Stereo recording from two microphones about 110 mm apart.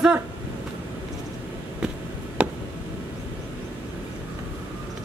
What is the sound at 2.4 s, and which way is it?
Tick, 10° right (ahead or behind).